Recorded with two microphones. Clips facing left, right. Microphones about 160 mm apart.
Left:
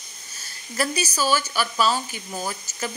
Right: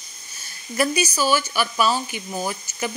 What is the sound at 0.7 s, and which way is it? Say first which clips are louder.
Speech: right 4 dB; 15° right (ahead or behind).